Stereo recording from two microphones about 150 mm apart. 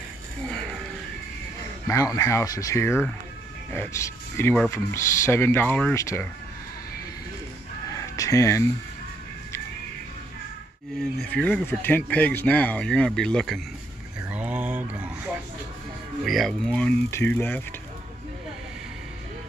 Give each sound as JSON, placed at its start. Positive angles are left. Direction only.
{"t": 1.9, "sound": "speech", "side_deg": 20}
{"t": 7.9, "sound": "a sound", "side_deg": 20}
{"t": 11.0, "sound": "speech", "side_deg": 5}
{"t": 14.3, "sound": "a sound", "side_deg": -10}
{"t": 16.3, "sound": "speech", "side_deg": 0}
{"t": 17.1, "sound": "speech", "side_deg": 15}